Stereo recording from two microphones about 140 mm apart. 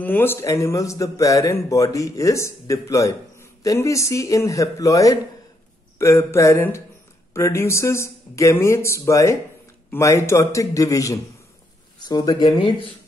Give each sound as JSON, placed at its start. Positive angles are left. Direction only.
{"t": 0.0, "sound": "speech", "side_deg": 15}